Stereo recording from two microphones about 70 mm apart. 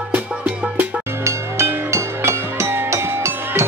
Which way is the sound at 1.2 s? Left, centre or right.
Right.